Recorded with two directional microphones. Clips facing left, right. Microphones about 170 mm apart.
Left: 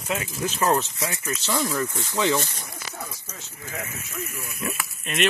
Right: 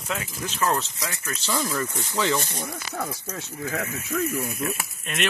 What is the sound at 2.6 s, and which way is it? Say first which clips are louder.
Speech: right 6 dB; 60° right (ahead or behind).